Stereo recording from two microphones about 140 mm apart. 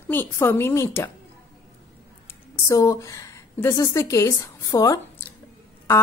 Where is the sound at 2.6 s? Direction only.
25° left (ahead or behind).